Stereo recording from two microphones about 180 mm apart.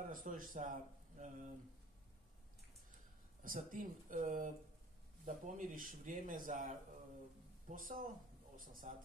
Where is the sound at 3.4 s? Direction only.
50° right (ahead or behind).